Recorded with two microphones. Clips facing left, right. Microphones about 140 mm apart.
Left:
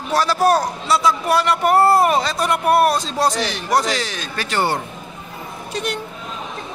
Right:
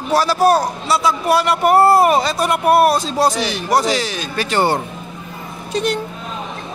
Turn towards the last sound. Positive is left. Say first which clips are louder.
# right 5 dB
turn(degrees=-30)  # may be behind; listen again after turning